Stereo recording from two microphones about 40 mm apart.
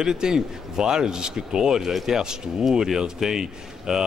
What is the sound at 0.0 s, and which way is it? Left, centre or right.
Speech, centre.